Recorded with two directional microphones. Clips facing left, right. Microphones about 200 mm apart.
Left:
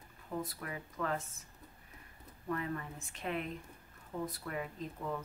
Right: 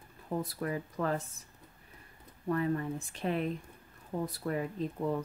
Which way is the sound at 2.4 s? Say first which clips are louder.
Right 7 dB; 35° right (ahead or behind).